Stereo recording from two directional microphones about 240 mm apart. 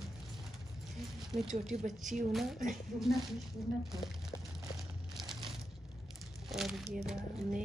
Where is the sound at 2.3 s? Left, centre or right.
Centre.